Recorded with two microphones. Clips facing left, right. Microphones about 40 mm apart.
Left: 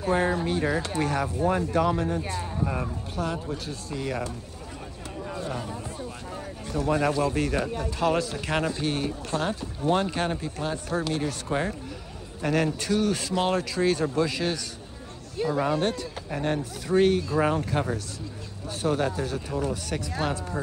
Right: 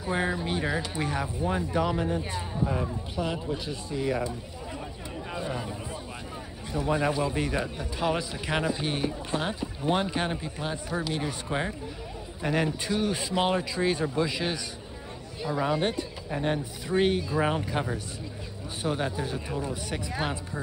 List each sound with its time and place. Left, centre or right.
0.0 s a man's voice: centre
3.9 s a man's voice: centre
5.3 s a sound: centre
6.7 s a man's voice: centre
15.7 s a man's voice: centre